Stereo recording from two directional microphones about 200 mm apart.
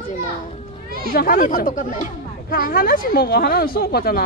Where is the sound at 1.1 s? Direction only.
45° left (ahead or behind).